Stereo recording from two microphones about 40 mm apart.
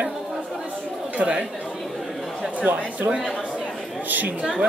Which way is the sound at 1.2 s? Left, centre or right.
Right.